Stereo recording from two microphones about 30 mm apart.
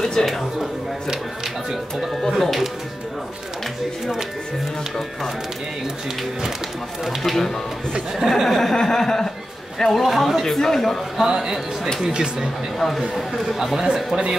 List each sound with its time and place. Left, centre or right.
0.0 s a man's voice: centre
2.2 s speech: centre
7.2 s chuckle: centre
8.2 s speech: centre
8.5 s chuckle: centre
9.8 s a man's voice: centre
10.0 s speech: centre
10.4 s chuckle: centre
11.2 s speech: centre
12.7 s speech: centre